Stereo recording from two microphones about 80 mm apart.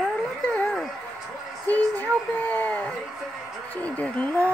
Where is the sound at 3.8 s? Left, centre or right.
Centre.